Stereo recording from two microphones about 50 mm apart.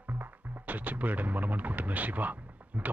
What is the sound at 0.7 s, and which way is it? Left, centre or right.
Speech, right.